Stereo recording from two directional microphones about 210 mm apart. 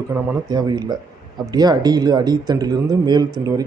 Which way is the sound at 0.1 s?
15° right (ahead or behind).